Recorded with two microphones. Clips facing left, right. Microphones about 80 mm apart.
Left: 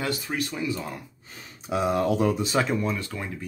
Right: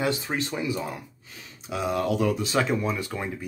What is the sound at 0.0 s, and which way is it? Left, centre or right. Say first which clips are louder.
Speech: right 2 dB; right.